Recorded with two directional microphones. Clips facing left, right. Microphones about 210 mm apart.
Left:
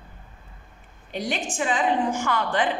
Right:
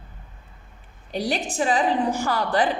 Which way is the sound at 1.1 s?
35° right (ahead or behind).